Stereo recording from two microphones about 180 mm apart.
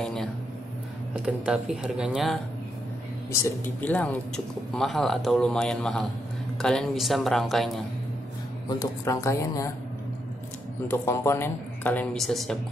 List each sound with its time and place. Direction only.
0.0 s speech: 5° left (ahead or behind)
1.1 s speech: 5° right (ahead or behind)
3.4 s speech: 10° left (ahead or behind)
8.6 s speech: 20° left (ahead or behind)
10.9 s speech: 15° left (ahead or behind)